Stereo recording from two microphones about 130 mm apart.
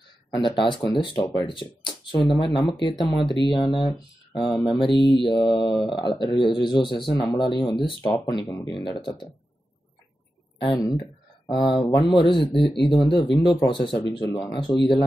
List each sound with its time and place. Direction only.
0.3 s speech: 40° left (ahead or behind)
8.0 s speech: 25° left (ahead or behind)
8.7 s speech: 40° left (ahead or behind)
10.7 s speech: 35° left (ahead or behind)